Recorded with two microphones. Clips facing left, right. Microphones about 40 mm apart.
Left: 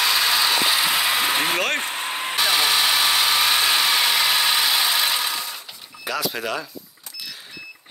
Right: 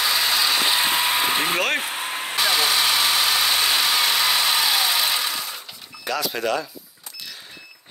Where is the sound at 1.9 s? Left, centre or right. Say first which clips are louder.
Left 1 dB; left.